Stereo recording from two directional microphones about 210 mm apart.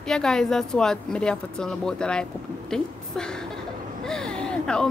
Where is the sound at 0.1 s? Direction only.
Centre (ahead or behind).